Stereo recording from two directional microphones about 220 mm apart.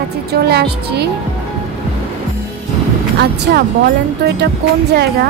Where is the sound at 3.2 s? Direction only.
50° right (ahead or behind).